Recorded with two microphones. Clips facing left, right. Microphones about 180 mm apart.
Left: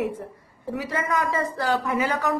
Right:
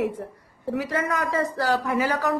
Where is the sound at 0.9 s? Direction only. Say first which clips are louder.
Left 3 dB; 45° right (ahead or behind).